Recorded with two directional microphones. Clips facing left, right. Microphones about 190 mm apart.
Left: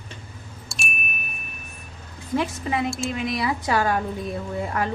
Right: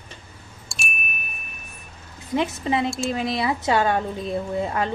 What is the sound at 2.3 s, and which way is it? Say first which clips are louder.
A woman's voice: right 2 dB; 25° right (ahead or behind).